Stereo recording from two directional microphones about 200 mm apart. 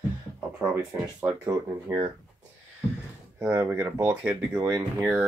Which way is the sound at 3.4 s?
10° right (ahead or behind).